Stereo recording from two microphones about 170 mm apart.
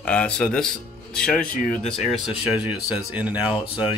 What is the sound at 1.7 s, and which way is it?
Speech, 5° left (ahead or behind).